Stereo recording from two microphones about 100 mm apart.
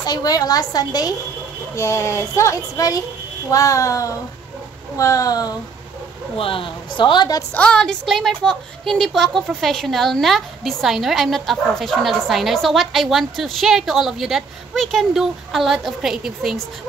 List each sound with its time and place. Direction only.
0.0 s a woman's voice: 40° left (ahead or behind)
1.8 s a woman's voice: 30° left (ahead or behind)
6.3 s a woman's voice: 65° left (ahead or behind)
7.5 s a woman's voice: 10° left (ahead or behind)